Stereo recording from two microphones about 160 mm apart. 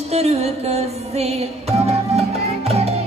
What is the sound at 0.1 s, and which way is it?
Music, 40° right (ahead or behind).